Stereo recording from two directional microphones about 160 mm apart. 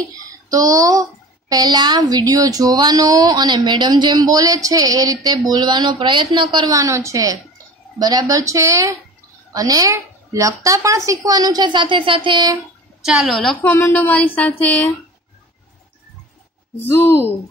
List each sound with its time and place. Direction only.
0.5 s speech: 20° right (ahead or behind)
13.0 s a woman's voice: 5° right (ahead or behind)
16.7 s a woman's voice: 15° left (ahead or behind)